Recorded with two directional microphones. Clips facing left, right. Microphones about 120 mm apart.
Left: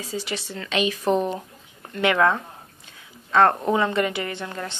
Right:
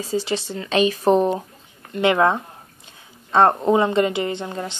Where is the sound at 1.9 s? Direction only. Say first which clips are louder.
Right 3 dB; 25° right (ahead or behind).